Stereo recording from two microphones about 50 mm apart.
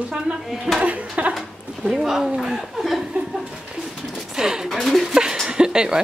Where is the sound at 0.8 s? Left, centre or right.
Right.